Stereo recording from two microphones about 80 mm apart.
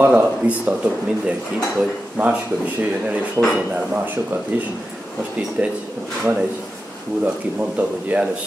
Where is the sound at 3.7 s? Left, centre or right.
Right.